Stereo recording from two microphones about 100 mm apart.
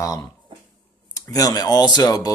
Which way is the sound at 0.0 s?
35° left (ahead or behind).